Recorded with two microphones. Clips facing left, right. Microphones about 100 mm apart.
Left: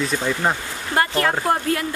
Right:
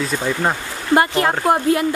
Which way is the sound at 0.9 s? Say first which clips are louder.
Right 4 dB; 20° right (ahead or behind).